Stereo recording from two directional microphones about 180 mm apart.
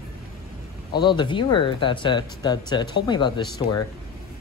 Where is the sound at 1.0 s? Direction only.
25° left (ahead or behind).